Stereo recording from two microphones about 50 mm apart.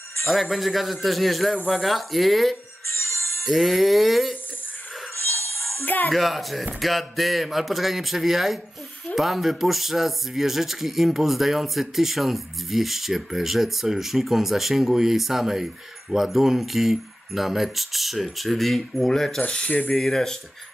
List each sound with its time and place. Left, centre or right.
0.2 s speech: centre
3.0 s music: left
3.4 s speech: centre
5.4 s music: left
6.1 s speech: centre
19.4 s mechanisms: left
19.9 s speech: centre